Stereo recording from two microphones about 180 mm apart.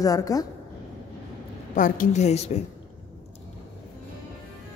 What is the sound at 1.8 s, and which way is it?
Speech, 45° left (ahead or behind).